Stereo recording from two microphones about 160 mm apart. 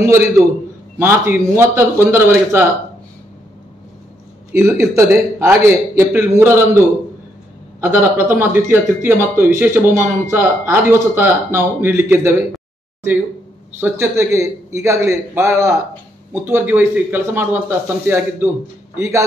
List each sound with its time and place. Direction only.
0.0 s a man's voice: 15° right (ahead or behind)
4.5 s a man's voice: 15° right (ahead or behind)
7.8 s a man's voice: 15° right (ahead or behind)
13.7 s a man's voice: 15° right (ahead or behind)